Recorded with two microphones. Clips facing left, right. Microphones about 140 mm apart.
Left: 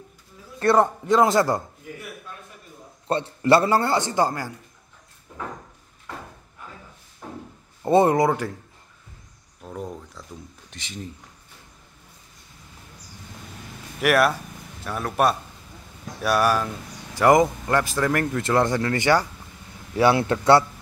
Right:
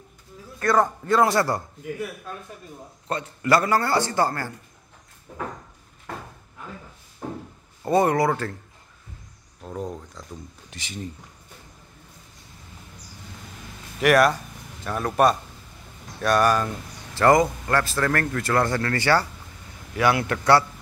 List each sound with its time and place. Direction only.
0.6 s a man's voice: 25° left (ahead or behind)
3.1 s a man's voice: 30° left (ahead or behind)
7.8 s a man's voice: 25° left (ahead or behind)
9.6 s speech: centre (ahead or behind)
13.9 s a man's voice: 5° left (ahead or behind); by 20.6 s 25° left (ahead or behind)